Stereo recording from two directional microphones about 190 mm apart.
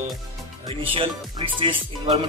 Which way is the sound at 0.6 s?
30° right (ahead or behind).